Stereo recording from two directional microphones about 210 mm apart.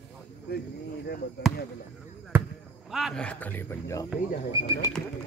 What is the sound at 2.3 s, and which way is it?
Basketball bounce, 10° right (ahead or behind).